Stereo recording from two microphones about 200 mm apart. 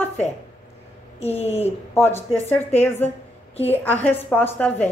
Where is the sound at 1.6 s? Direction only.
10° left (ahead or behind).